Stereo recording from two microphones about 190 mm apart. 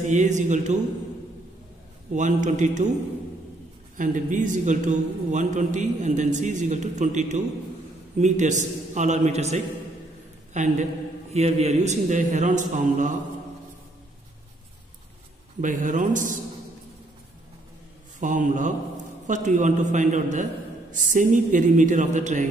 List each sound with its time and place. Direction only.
0.1 s a man's voice: 40° right (ahead or behind)
2.1 s a man's voice: 40° right (ahead or behind)
4.0 s a man's voice: 40° right (ahead or behind)
15.6 s a man's voice: 40° right (ahead or behind)
18.2 s a man's voice: 40° right (ahead or behind)